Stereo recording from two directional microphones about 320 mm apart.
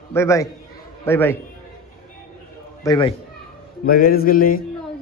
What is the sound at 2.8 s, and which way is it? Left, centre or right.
Speech, centre.